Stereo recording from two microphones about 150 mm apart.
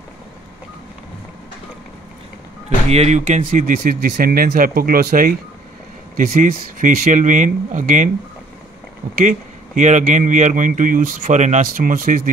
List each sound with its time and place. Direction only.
2.9 s speech: 45° right (ahead or behind)
9.2 s speech: 55° right (ahead or behind)